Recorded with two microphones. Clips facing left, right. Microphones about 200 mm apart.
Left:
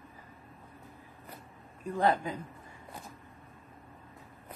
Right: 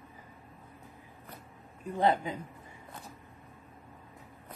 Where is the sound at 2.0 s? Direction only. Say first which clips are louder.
Right 1 dB; 25° right (ahead or behind).